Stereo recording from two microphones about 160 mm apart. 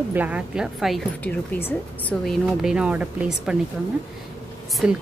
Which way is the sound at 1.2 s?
15° left (ahead or behind).